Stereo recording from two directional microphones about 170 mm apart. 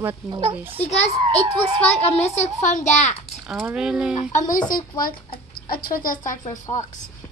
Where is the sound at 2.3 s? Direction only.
45° left (ahead or behind).